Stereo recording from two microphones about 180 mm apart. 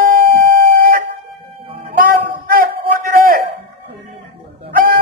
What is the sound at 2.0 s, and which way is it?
Music, 50° right (ahead or behind).